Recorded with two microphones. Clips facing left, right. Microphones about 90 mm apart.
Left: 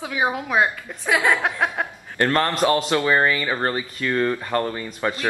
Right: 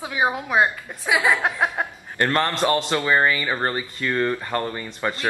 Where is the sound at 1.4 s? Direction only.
15° right (ahead or behind).